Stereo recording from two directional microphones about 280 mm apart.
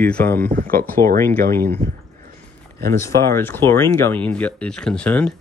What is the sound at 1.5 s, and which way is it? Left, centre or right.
Speech, centre.